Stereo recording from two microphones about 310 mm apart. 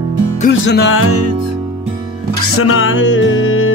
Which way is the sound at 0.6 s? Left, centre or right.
Left.